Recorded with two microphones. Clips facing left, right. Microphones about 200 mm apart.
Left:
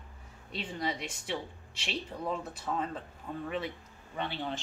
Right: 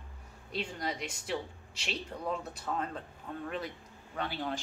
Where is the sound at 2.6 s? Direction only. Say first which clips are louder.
Left 3 dB; 5° left (ahead or behind).